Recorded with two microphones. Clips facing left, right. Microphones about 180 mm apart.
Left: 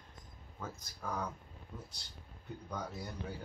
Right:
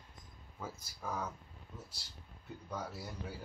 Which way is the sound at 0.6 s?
5° right (ahead or behind).